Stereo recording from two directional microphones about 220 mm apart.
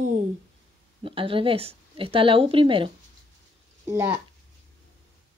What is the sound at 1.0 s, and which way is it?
A woman's voice, 25° right (ahead or behind).